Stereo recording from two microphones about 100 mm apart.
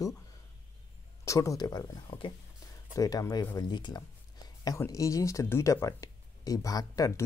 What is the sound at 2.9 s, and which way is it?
Speech, 35° left (ahead or behind).